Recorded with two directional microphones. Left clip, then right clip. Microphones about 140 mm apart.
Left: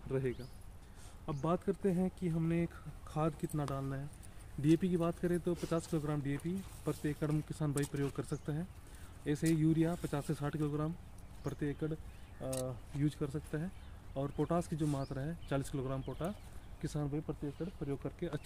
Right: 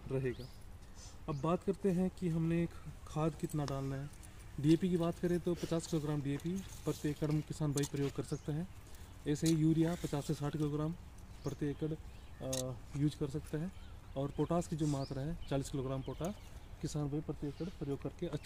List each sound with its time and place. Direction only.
0.1 s speech: 25° right (ahead or behind)
1.2 s speech: 15° right (ahead or behind)
13.0 s speech: 5° right (ahead or behind)